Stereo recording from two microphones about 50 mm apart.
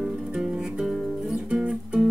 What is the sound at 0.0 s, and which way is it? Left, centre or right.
Music, centre.